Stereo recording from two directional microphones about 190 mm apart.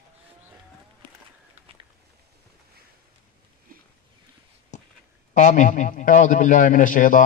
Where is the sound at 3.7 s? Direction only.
50° right (ahead or behind).